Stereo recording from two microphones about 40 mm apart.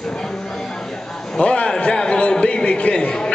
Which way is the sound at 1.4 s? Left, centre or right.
Left.